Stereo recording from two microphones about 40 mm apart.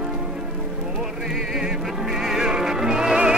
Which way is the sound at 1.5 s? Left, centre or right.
Centre.